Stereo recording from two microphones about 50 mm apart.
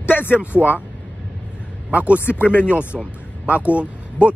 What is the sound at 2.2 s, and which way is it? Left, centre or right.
Speech, left.